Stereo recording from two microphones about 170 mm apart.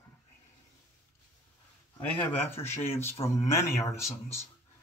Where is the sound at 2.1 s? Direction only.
10° left (ahead or behind).